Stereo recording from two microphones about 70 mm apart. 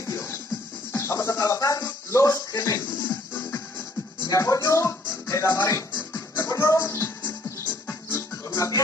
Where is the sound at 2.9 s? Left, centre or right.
Left.